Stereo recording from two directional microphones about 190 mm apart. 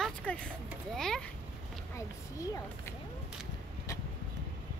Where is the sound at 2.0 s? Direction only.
15° left (ahead or behind).